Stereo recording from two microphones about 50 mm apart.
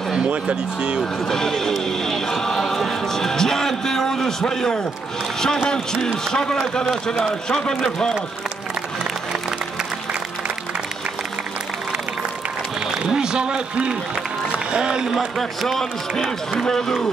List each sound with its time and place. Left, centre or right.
0.1 s speech: right
1.3 s a man's voice: centre
1.9 s music: centre
6.3 s a man's voice: centre
13.0 s a man's voice: centre
14.5 s a sound: centre
15.1 s a man's voice: centre
16.5 s a man's voice: centre